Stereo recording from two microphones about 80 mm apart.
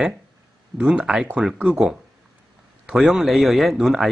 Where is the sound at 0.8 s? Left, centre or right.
Centre.